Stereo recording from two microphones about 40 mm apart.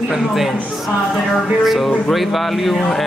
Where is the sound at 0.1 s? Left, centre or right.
Centre.